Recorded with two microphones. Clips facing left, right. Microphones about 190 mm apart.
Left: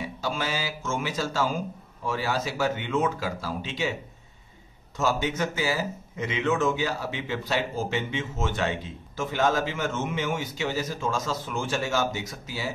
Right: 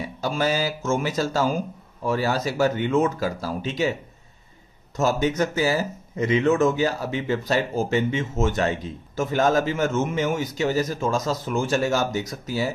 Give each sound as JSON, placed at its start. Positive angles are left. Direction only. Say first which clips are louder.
{"t": 0.2, "sound": "speech", "louder": "right 7 dB", "side_deg": -40}
{"t": 4.9, "sound": "speech", "louder": "right 5 dB", "side_deg": -40}